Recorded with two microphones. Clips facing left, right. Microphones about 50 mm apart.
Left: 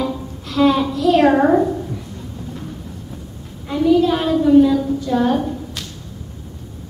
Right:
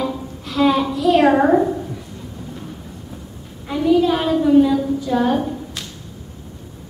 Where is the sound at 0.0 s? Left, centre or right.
Centre.